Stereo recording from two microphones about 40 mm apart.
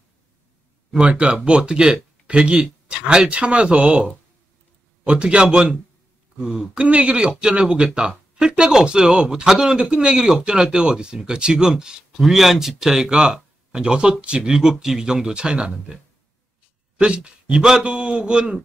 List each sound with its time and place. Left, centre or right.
1.0 s speech: right
12.2 s speech: centre
13.1 s speech: right
17.0 s speech: right